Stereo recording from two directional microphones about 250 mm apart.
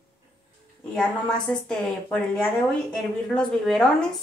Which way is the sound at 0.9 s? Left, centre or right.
Centre.